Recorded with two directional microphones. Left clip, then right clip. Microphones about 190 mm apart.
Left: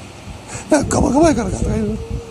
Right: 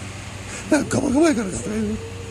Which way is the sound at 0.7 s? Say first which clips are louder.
Left 5 dB; 5° right (ahead or behind).